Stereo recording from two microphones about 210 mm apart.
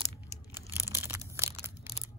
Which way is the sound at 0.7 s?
10° right (ahead or behind).